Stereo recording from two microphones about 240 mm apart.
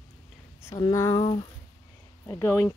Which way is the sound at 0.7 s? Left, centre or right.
Centre.